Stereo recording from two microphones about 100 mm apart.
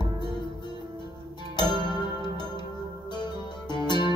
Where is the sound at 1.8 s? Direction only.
45° left (ahead or behind).